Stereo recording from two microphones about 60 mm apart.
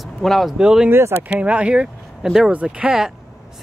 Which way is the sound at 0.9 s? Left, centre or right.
Right.